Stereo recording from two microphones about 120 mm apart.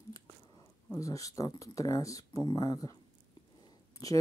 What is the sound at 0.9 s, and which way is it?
Speech, 30° left (ahead or behind).